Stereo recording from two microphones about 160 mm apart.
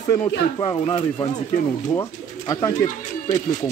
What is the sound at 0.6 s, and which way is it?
Speech, 30° left (ahead or behind).